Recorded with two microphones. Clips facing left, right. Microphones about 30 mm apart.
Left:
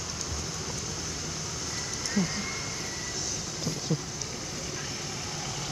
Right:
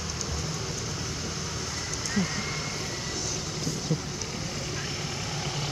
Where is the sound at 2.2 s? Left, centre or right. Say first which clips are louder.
Even; centre.